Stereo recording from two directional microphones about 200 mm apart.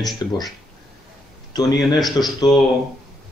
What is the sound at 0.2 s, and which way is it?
Speech, 20° left (ahead or behind).